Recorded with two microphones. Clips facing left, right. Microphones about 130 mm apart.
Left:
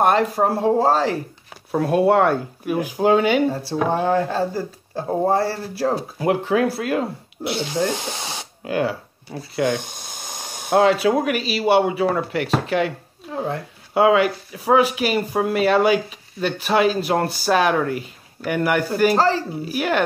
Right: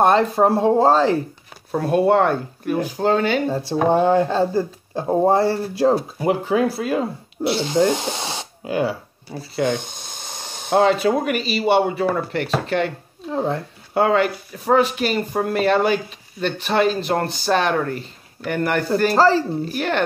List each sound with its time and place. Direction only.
0.0 s speech: 25° right (ahead or behind)
1.7 s speech: centre (ahead or behind)
4.0 s speech: 25° right (ahead or behind)
6.1 s speech: centre (ahead or behind)
7.4 s speech: 30° right (ahead or behind)
8.6 s speech: centre (ahead or behind)
9.6 s speech: 10° left (ahead or behind)
13.3 s speech: 30° right (ahead or behind)
13.9 s speech: 5° left (ahead or behind)
19.1 s speech: 35° right (ahead or behind)
19.5 s speech: 5° left (ahead or behind)